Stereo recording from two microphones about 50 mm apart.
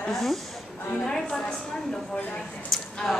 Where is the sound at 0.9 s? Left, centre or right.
Centre.